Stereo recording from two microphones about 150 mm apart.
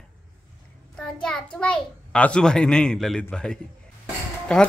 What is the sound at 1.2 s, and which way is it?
A child's voice, 5° left (ahead or behind).